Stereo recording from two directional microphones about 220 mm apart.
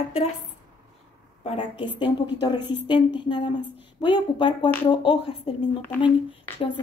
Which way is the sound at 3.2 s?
20° left (ahead or behind).